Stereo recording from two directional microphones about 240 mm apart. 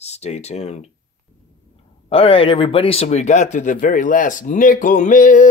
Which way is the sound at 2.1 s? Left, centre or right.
Left.